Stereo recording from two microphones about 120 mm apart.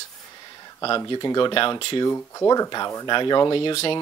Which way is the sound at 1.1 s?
40° left (ahead or behind).